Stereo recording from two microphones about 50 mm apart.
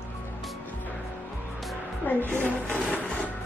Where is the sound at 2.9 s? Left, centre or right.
Left.